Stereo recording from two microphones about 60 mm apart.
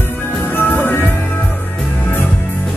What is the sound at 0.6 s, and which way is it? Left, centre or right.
Music, left.